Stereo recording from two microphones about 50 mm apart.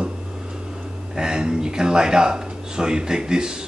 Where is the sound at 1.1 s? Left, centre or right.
Centre.